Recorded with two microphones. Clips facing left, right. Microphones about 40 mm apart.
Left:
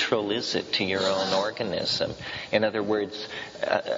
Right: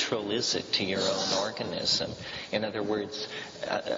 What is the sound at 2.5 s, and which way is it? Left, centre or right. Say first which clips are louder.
Speech: left 6 dB; left.